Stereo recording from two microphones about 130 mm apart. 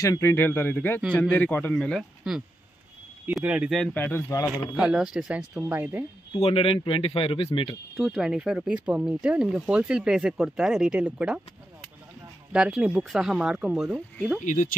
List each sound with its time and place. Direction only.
0.0 s speech: 20° left (ahead or behind); by 2.0 s 5° left (ahead or behind)
2.3 s speech: 5° right (ahead or behind)
3.8 s speech: 15° left (ahead or behind)
4.7 s speech: 5° right (ahead or behind)
6.4 s speech: 45° left (ahead or behind)
8.0 s speech: 5° right (ahead or behind)
12.5 s speech: 10° right (ahead or behind)
13.9 s speech: centre (ahead or behind)
14.4 s speech: 80° left